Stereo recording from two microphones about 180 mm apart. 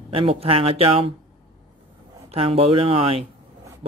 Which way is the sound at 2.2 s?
35° right (ahead or behind).